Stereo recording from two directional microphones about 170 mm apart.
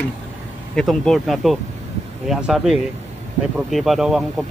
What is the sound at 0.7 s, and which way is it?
A man's voice, centre (ahead or behind).